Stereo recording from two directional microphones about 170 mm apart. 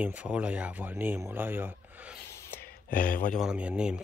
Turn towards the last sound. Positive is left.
turn(degrees=-5)  # may be behind; listen again after turning